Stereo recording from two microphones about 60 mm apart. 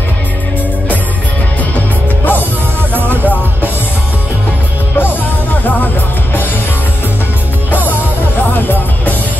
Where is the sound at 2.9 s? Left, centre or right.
Right.